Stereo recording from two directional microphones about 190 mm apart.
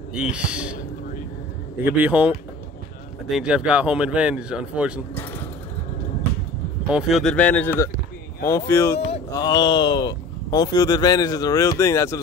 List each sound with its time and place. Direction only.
0.1 s speech: 5° right (ahead or behind)
1.9 s speech: 10° right (ahead or behind)
6.9 s speech: centre (ahead or behind); by 12.2 s 15° left (ahead or behind)